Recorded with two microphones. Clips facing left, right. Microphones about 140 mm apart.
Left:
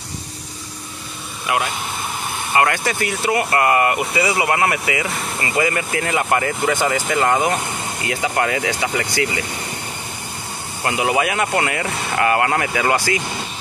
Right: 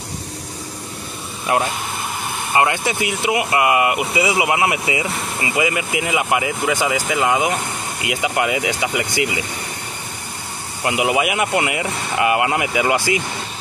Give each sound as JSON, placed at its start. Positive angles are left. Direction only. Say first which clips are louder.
{"t": 1.5, "sound": "speech", "louder": "right 2 dB", "side_deg": -35}
{"t": 2.5, "sound": "speech", "louder": "even", "side_deg": -20}
{"t": 10.9, "sound": "speech", "louder": "right 1 dB", "side_deg": -15}